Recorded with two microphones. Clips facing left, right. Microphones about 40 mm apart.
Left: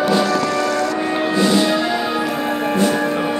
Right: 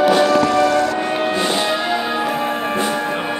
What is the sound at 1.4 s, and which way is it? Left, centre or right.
Music, right.